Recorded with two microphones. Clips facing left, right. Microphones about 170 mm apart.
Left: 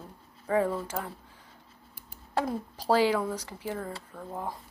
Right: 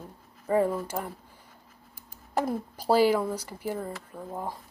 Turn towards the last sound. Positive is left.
turn(degrees=-10)  # may be behind; listen again after turning